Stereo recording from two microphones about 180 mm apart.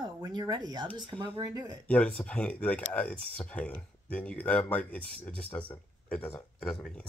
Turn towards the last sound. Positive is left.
turn(degrees=10)  # may be behind; listen again after turning